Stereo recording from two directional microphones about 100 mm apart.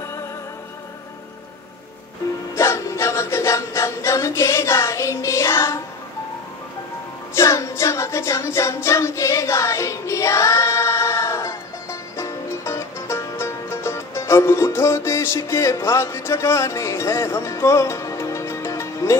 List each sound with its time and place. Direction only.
2.5 s music: 30° left (ahead or behind)
7.3 s music: 30° left (ahead or behind)